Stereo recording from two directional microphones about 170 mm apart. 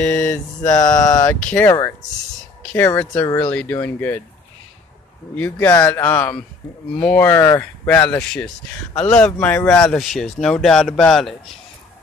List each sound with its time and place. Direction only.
0.0 s mantra: 10° left (ahead or behind)
0.7 s a sound: 20° left (ahead or behind)
1.3 s speech: 5° left (ahead or behind)
1.7 s a sound: 20° left (ahead or behind)
2.6 s speech: 10° left (ahead or behind)
5.3 s speech: 10° left (ahead or behind)